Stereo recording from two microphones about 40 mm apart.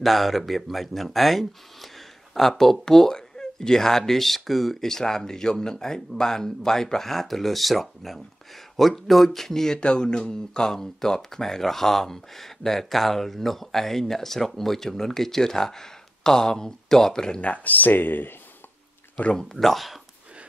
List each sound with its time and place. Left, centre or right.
0.0 s speech: centre
9.8 s speech: left
17.4 s speech: left
19.3 s speech: centre